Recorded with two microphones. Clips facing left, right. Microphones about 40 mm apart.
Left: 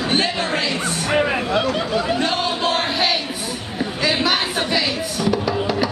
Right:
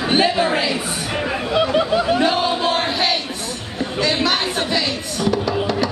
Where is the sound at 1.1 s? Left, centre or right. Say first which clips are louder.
Left 5 dB; centre.